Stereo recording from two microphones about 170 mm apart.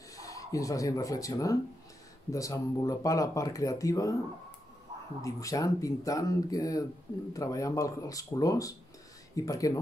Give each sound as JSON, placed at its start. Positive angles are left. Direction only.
{"t": 0.1, "sound": "speech", "side_deg": 20}
{"t": 5.2, "sound": "speech", "side_deg": 20}